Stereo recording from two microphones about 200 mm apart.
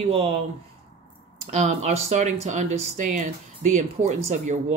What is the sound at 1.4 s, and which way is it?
Speech, 35° right (ahead or behind).